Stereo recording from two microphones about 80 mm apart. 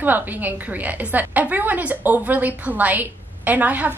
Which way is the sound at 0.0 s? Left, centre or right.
Right.